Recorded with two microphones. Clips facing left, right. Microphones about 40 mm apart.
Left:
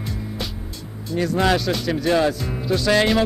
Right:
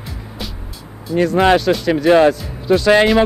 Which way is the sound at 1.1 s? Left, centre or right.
Centre.